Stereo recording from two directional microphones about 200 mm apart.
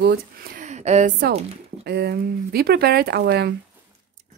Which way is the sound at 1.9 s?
55° right (ahead or behind).